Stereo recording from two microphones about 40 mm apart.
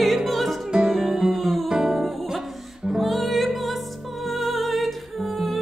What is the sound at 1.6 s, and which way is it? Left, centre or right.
Music, centre.